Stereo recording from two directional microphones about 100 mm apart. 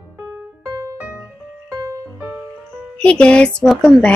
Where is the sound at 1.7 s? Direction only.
35° right (ahead or behind).